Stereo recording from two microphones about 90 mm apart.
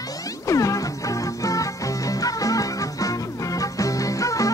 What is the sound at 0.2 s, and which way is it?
Music, 40° left (ahead or behind).